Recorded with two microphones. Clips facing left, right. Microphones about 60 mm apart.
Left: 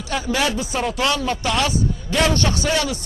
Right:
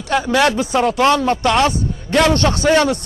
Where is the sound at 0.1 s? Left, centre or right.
Right.